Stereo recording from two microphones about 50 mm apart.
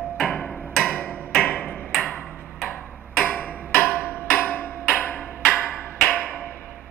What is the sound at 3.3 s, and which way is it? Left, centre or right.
Tick-tock, left.